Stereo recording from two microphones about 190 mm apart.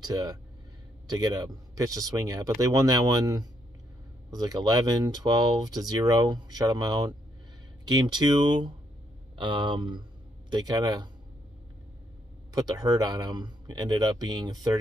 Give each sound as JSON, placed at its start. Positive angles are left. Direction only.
{"t": 0.0, "sound": "speech", "side_deg": -20}
{"t": 12.5, "sound": "speech", "side_deg": -20}